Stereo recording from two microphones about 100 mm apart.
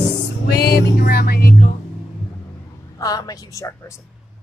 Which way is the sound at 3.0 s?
40° left (ahead or behind).